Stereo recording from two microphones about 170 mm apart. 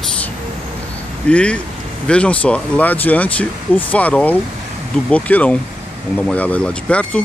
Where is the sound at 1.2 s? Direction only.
5° left (ahead or behind).